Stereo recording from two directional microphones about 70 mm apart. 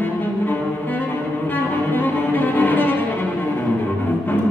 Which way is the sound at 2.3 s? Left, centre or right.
Left.